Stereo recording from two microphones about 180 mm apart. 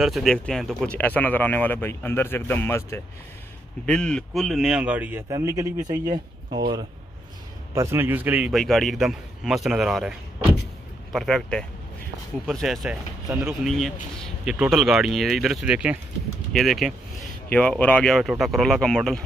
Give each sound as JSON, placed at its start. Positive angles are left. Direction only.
{"t": 0.0, "sound": "a man's voice", "side_deg": 0}
{"t": 7.7, "sound": "a man's voice", "side_deg": -15}
{"t": 11.1, "sound": "a man's voice", "side_deg": 0}